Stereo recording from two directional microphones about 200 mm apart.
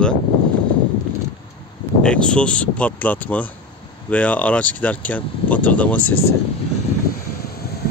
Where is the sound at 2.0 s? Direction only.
5° left (ahead or behind).